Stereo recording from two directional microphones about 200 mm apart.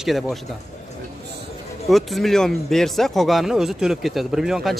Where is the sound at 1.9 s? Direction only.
Centre (ahead or behind).